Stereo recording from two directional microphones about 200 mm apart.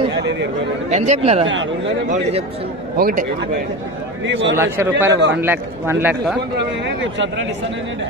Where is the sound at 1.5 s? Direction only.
70° right (ahead or behind).